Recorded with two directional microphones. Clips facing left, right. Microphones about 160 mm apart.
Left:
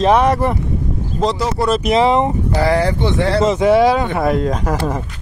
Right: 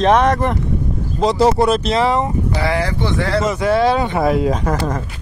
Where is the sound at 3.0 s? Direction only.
20° left (ahead or behind).